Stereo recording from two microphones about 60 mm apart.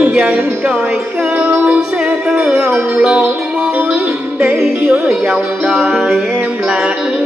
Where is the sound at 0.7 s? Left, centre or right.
Right.